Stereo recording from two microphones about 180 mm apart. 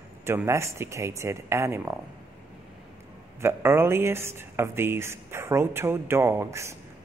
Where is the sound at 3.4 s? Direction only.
15° right (ahead or behind).